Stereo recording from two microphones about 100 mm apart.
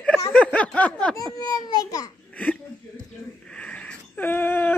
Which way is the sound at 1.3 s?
45° left (ahead or behind).